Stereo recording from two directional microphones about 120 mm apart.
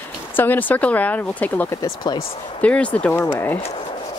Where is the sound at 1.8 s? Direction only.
35° left (ahead or behind).